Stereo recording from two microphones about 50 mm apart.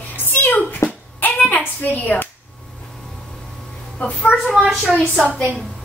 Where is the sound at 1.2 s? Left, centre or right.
Left.